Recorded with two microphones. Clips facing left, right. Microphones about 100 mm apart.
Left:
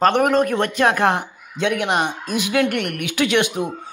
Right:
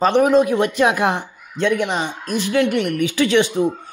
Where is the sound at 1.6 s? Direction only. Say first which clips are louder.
Right 1 dB; 80° left.